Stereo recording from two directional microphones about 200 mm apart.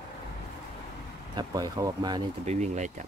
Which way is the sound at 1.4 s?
20° right (ahead or behind).